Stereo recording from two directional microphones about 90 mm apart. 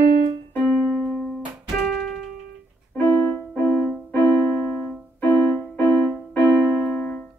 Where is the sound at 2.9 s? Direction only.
25° left (ahead or behind).